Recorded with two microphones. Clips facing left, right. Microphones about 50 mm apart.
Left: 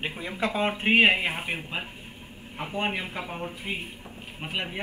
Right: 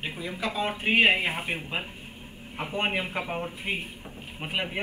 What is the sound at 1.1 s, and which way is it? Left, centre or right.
Speech, centre.